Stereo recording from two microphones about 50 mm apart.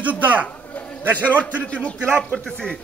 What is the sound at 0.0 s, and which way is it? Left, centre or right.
Speech, right.